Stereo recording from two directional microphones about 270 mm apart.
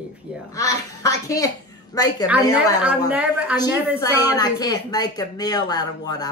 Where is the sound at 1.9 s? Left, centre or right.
Centre.